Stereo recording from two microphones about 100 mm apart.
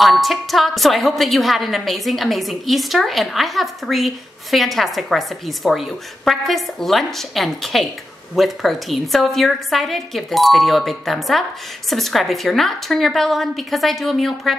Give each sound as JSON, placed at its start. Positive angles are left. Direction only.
{"t": 0.0, "sound": "a woman's voice", "side_deg": 0}